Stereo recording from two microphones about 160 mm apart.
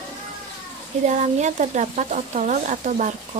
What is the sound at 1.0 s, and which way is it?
Speech, 50° right (ahead or behind).